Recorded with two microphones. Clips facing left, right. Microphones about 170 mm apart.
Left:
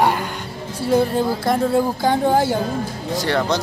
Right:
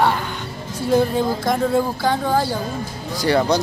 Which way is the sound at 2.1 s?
20° left (ahead or behind).